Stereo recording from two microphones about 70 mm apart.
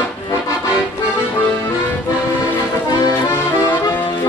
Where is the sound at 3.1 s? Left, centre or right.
Left.